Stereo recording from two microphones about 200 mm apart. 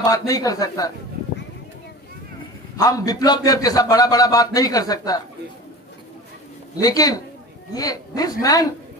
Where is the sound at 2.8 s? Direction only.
15° left (ahead or behind).